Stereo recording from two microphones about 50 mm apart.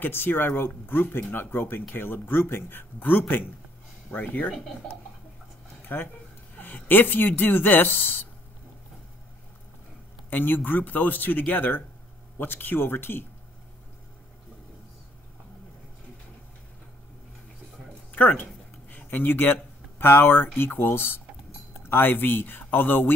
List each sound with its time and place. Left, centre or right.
0.0 s speech: left
5.9 s speech: left
10.3 s speech: left
18.4 s speech: left